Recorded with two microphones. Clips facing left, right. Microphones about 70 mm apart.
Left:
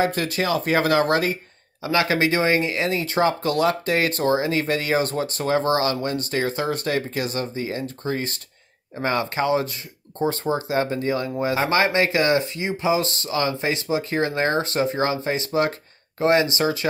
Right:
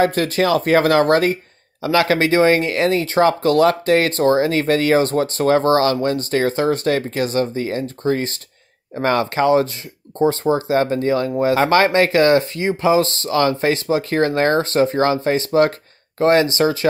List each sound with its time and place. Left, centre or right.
0.0 s speech: right
9.0 s speech: right
10.2 s speech: right
10.8 s speech: right